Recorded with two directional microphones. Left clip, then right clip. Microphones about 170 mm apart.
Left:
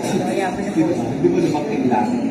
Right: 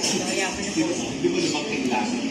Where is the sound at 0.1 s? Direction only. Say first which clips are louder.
Left 5 dB; 25° left (ahead or behind).